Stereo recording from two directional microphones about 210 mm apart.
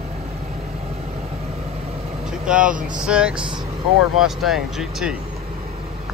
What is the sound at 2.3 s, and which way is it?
Vehicle, 5° right (ahead or behind).